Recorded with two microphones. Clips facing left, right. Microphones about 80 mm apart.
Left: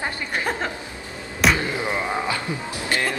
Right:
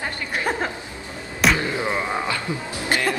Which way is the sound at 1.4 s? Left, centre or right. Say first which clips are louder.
Even; centre.